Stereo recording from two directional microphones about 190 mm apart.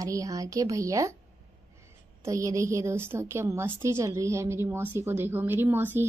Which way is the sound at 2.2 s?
15° right (ahead or behind).